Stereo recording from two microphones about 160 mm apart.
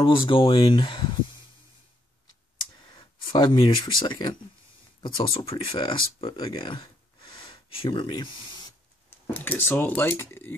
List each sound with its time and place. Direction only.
0.0 s speech: 35° left (ahead or behind)
2.8 s speech: 30° left (ahead or behind)
9.3 s speech: 10° left (ahead or behind)